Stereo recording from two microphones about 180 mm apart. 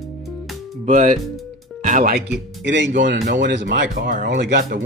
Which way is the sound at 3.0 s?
90° right.